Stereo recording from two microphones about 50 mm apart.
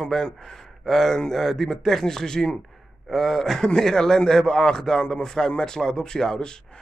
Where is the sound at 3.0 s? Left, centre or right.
Centre.